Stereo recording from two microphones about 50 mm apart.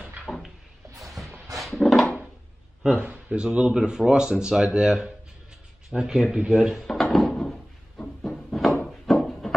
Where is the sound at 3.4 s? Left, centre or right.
Centre.